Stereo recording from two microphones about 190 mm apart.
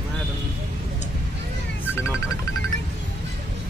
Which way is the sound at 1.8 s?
15° left (ahead or behind).